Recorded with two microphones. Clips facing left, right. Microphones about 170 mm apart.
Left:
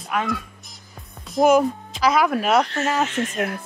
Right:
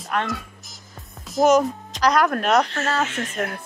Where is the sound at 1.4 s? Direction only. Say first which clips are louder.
Left 1 dB; 5° left (ahead or behind).